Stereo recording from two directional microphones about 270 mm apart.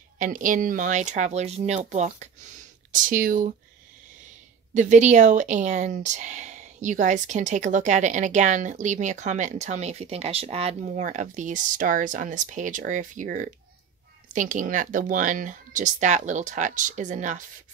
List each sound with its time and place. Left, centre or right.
0.2 s speech: right
4.7 s speech: right